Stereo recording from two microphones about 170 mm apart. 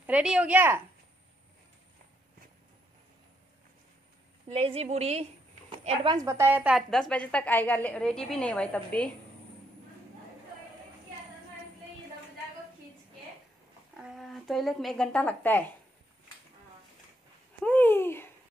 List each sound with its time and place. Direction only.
0.0 s speech: 5° right (ahead or behind)
4.6 s speech: 35° right (ahead or behind)
6.2 s a woman's voice: 15° right (ahead or behind); by 9.1 s 5° left (ahead or behind)
14.1 s a woman's voice: centre (ahead or behind)
17.6 s speech: 10° left (ahead or behind)